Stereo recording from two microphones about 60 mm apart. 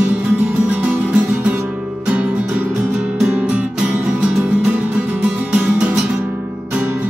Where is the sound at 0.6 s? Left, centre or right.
Right.